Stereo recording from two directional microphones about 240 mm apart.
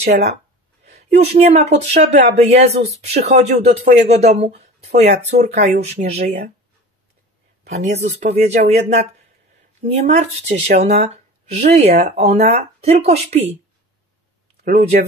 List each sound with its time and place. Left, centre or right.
0.0 s speech: right
7.7 s speech: right